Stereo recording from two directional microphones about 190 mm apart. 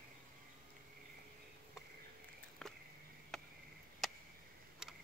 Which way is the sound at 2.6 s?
5° left (ahead or behind).